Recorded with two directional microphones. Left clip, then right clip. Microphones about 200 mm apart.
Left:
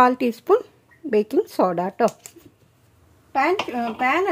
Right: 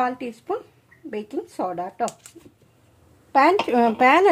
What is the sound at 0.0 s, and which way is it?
Speech, 55° left (ahead or behind).